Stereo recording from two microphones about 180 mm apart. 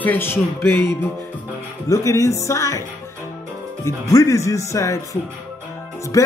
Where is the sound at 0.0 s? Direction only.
10° left (ahead or behind).